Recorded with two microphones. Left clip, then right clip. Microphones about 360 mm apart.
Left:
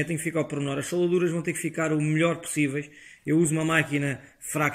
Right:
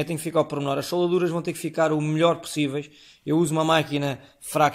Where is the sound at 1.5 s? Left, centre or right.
Right.